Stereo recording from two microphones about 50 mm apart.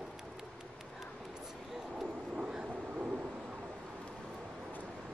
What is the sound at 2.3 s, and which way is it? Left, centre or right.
Vehicle, right.